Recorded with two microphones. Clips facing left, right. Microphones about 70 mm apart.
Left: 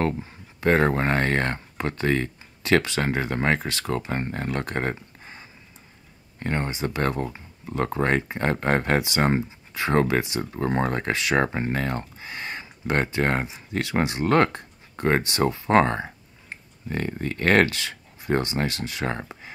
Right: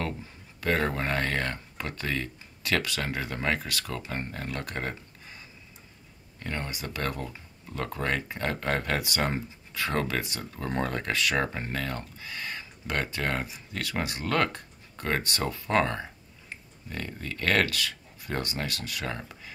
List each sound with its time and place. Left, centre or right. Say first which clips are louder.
0.0 s speech: left 8 dB; left